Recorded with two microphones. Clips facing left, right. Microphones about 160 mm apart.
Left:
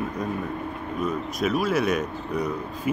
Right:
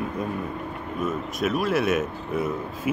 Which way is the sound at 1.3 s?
Centre (ahead or behind).